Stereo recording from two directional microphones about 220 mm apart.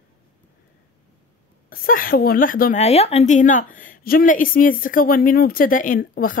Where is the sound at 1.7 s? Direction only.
40° left (ahead or behind).